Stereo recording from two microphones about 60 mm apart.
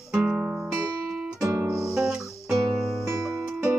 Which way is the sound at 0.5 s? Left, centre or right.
Centre.